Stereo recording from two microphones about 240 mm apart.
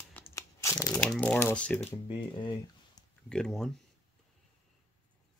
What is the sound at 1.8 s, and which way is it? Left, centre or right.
Speech, left.